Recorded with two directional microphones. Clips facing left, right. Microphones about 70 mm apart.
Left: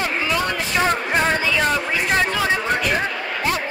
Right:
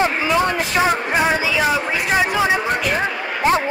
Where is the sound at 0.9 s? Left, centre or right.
Centre.